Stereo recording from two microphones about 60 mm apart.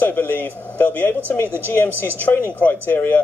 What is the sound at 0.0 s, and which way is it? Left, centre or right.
A man's voice, left.